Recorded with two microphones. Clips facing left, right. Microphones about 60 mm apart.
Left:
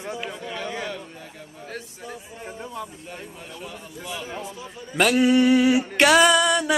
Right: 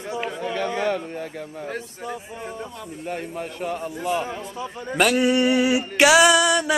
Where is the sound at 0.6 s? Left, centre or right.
Right.